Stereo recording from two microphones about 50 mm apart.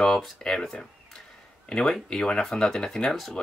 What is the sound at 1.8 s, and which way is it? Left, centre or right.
Speech, centre.